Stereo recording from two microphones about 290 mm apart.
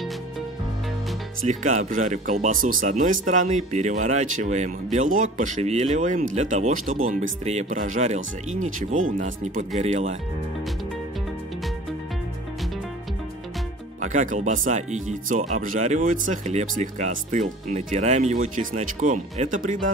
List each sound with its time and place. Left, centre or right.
1.5 s speech: right
14.0 s speech: right